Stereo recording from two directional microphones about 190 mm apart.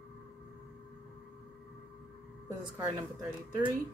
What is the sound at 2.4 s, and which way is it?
Speech, 20° right (ahead or behind).